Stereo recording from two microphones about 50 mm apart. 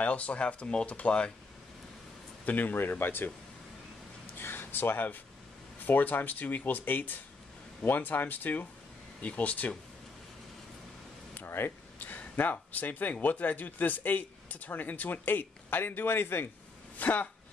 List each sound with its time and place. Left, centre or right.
0.0 s speech: left
2.4 s speech: left
4.4 s speech: left
11.3 s a sound: left
12.4 s speech: left
16.9 s speech: left